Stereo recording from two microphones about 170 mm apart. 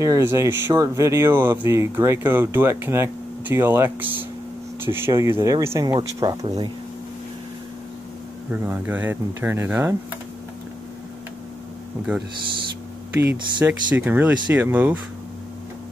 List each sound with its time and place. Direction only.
0.0 s speech: 15° right (ahead or behind)
8.5 s speech: 10° right (ahead or behind)
13.3 s speech: 10° right (ahead or behind)